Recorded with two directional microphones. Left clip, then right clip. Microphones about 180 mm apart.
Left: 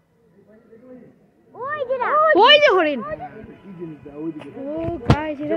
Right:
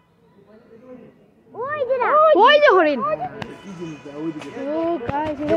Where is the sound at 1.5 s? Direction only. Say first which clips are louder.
Right 2 dB; 55° right (ahead or behind).